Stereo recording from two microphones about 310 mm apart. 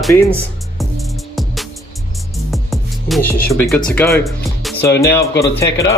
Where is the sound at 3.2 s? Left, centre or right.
Left.